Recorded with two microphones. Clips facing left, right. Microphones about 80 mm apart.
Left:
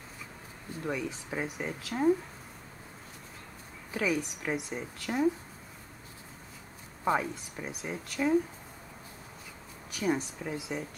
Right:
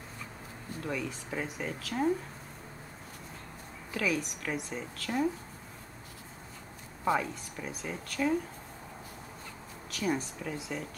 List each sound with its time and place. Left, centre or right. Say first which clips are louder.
0.8 s speech: left 2 dB; centre
3.9 s a woman's voice: left 1 dB; centre
7.1 s speech: left 1 dB; centre
9.8 s speech: left 2 dB; centre